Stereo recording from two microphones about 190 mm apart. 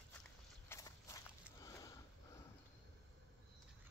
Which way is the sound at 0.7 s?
15° left (ahead or behind).